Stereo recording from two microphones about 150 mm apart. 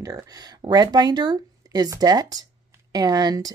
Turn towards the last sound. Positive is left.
turn(degrees=-25)  # may be behind; listen again after turning